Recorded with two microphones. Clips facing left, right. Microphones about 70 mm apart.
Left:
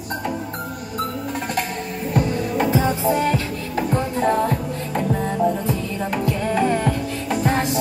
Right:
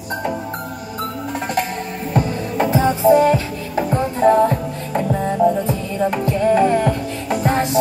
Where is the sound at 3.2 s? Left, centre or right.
Right.